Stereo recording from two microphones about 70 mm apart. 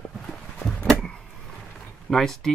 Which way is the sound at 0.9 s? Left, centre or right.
Centre.